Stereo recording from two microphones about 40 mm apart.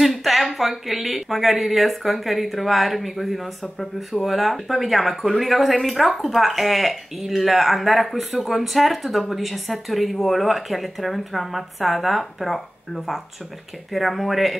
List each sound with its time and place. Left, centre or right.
0.0 s speech: centre
3.6 s speech: centre
4.2 s speech: centre